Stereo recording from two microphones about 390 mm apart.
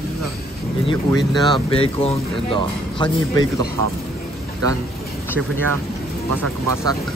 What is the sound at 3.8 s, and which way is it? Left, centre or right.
Speech, right.